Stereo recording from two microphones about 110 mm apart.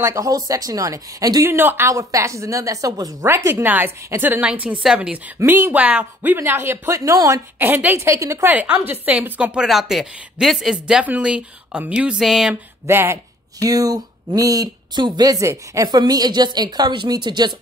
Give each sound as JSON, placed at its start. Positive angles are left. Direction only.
{"t": 0.0, "sound": "a woman's voice", "side_deg": -30}
{"t": 5.4, "sound": "speech", "side_deg": -20}
{"t": 7.5, "sound": "speech", "side_deg": -20}
{"t": 8.5, "sound": "a woman's voice", "side_deg": -15}
{"t": 12.8, "sound": "speech", "side_deg": -20}
{"t": 13.6, "sound": "speech", "side_deg": -35}